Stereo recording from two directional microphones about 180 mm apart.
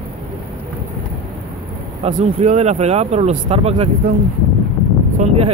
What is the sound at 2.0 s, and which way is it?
Speech, 40° right (ahead or behind).